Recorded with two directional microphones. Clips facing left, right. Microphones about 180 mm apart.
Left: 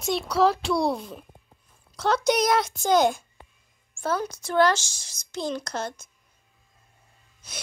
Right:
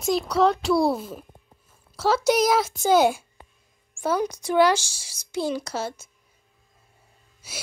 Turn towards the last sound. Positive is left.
turn(degrees=-5)  # may be behind; listen again after turning